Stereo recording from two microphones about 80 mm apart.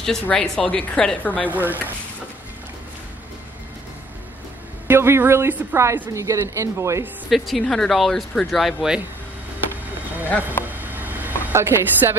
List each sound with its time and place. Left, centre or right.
0.0 s speech: centre
1.5 s a woman's voice: right
4.8 s speech: right
7.2 s speech: centre
10.2 s speech: left
10.8 s vehicle: right
11.5 s a woman's voice: right